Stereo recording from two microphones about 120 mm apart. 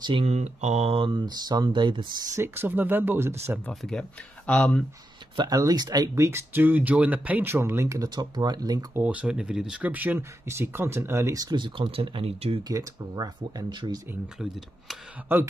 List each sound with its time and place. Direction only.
0.2 s mantra: 65° right (ahead or behind)
0.9 s speech: 45° right (ahead or behind)
2.3 s speech: 20° right (ahead or behind)
3.6 s speech: 5° left (ahead or behind)
5.3 s speech: 40° right (ahead or behind)
8.9 s speech: 10° right (ahead or behind); by 12.5 s 55° right (ahead or behind)
12.6 s speech: 30° right (ahead or behind)
15.3 s speech: 20° right (ahead or behind)